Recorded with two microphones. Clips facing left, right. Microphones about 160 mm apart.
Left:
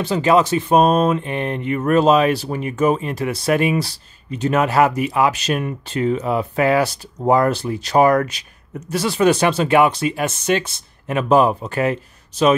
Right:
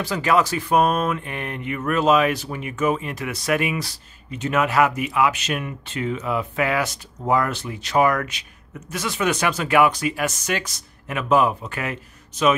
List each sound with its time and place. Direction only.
0.0 s speech: 25° left (ahead or behind)